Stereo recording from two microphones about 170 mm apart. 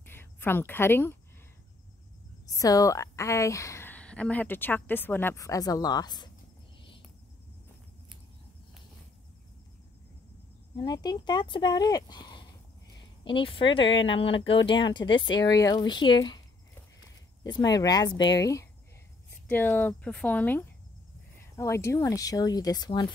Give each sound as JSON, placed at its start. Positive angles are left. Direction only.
{"t": 0.0, "sound": "a sound", "side_deg": 15}
{"t": 2.4, "sound": "a woman's voice", "side_deg": 20}
{"t": 10.8, "sound": "speech", "side_deg": 25}
{"t": 13.8, "sound": "speech", "side_deg": 90}
{"t": 14.6, "sound": "speech", "side_deg": 30}
{"t": 17.6, "sound": "a woman's voice", "side_deg": 20}